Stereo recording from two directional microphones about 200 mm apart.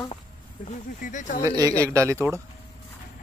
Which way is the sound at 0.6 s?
40° left (ahead or behind).